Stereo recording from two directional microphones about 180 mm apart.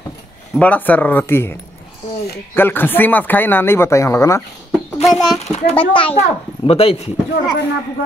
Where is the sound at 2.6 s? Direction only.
10° left (ahead or behind).